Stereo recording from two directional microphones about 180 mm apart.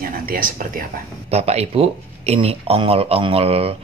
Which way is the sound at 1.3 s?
35° right (ahead or behind).